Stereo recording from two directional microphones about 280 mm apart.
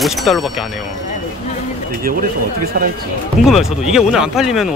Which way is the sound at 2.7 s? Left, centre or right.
Right.